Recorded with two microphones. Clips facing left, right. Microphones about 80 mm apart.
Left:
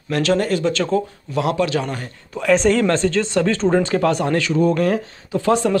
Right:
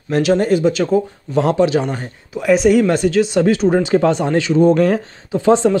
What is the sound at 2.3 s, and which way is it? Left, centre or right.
A man's voice, centre.